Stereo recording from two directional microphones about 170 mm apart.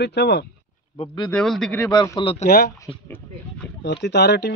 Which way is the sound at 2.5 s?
65° left (ahead or behind).